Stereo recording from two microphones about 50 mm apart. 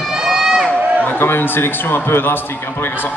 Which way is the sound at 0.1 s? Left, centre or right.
Centre.